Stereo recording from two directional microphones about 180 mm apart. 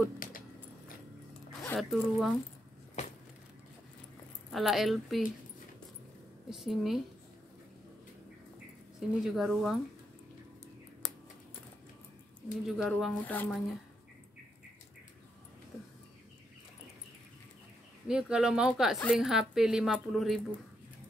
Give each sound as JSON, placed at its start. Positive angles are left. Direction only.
{"t": 0.2, "sound": "a sound", "side_deg": 50}
{"t": 1.6, "sound": "a woman's voice", "side_deg": 5}
{"t": 3.0, "sound": "a sound", "side_deg": 40}
{"t": 4.5, "sound": "a woman's voice", "side_deg": 0}
{"t": 6.5, "sound": "a woman's voice", "side_deg": 0}
{"t": 9.1, "sound": "a woman's voice", "side_deg": 0}
{"t": 12.6, "sound": "a woman's voice", "side_deg": 0}
{"t": 13.3, "sound": "speech", "side_deg": 10}
{"t": 18.0, "sound": "a woman's voice", "side_deg": -5}